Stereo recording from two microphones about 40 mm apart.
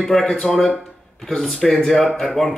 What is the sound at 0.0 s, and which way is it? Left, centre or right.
Speech, centre.